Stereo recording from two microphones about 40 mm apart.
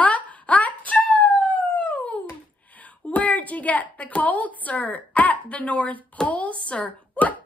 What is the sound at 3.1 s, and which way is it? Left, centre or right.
A woman's voice, left.